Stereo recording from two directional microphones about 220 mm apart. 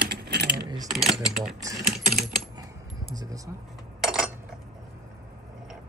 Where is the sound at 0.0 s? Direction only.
45° right (ahead or behind).